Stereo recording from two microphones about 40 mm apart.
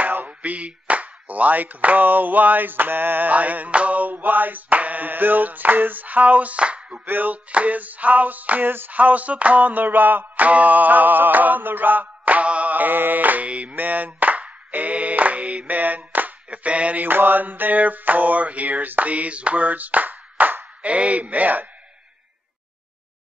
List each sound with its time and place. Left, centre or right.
0.0 s a sound: right
0.3 s a sound: right
3.3 s music: right
7.1 s music: right
7.5 s music: right
8.6 s music: right
8.9 s music: right
13.7 s music: right
14.7 s a sound: right
16.4 s a sound: right
17.0 s music: right
20.8 s a man's voice: right